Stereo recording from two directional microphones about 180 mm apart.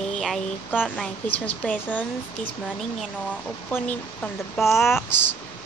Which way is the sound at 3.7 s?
10° left (ahead or behind).